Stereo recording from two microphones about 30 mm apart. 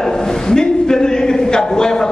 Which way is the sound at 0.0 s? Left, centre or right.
Centre.